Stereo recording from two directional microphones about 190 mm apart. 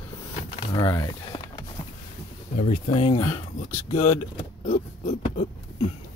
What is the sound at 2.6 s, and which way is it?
Speech, 40° left (ahead or behind).